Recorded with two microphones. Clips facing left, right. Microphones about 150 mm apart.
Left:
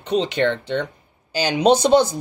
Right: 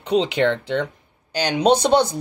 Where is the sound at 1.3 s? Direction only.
10° left (ahead or behind).